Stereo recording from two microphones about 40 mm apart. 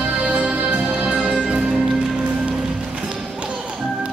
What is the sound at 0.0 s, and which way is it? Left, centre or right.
Music, right.